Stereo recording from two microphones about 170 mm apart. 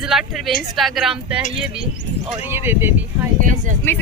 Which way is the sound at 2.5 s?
15° right (ahead or behind).